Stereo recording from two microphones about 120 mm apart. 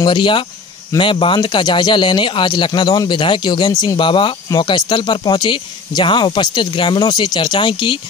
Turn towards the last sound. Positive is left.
turn(degrees=45)  # may be behind; listen again after turning